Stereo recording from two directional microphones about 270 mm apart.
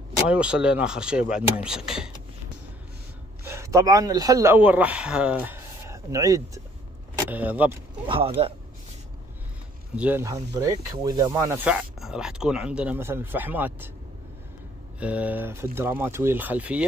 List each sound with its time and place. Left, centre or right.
0.3 s speech: centre
3.4 s a man's voice: centre
8.4 s speech: right
9.9 s speech: centre
15.0 s speech: centre